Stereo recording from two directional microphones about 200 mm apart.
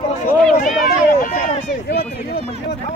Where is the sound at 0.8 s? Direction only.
45° left (ahead or behind).